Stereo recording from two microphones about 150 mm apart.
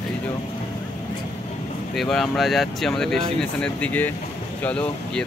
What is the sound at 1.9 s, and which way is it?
Speech, centre (ahead or behind).